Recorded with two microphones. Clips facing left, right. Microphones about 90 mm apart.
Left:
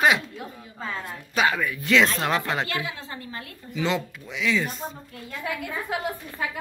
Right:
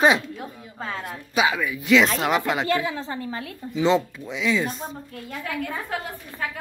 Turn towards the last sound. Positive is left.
turn(degrees=10)  # may be behind; listen again after turning